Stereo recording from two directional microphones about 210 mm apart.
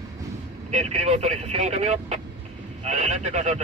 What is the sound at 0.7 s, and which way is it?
Speech, 30° right (ahead or behind).